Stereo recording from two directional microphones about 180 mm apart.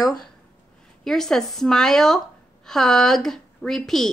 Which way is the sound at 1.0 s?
Centre (ahead or behind).